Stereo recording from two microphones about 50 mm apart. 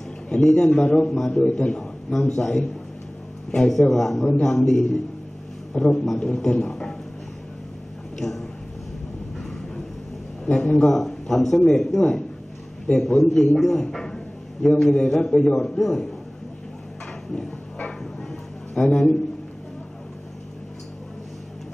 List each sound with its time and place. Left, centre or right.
0.3 s a man's voice: centre
8.2 s a sound: centre
10.4 s a man's voice: centre
18.8 s a man's voice: centre